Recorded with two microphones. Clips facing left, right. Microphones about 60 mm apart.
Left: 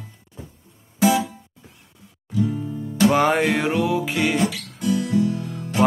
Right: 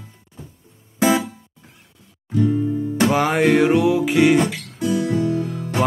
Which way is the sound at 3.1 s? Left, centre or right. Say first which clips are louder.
Right 1 dB; centre.